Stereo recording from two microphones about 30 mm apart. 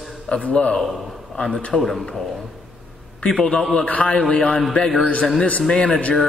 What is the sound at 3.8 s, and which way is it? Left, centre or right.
Speech, left.